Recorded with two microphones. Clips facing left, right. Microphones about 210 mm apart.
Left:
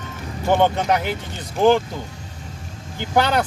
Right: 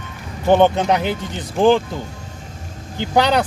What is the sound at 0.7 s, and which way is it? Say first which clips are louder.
Speech: right 3 dB; 20° right (ahead or behind).